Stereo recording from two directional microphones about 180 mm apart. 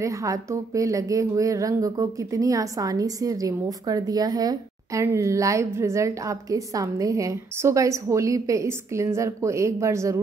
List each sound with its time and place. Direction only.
0.0 s speech: 15° right (ahead or behind)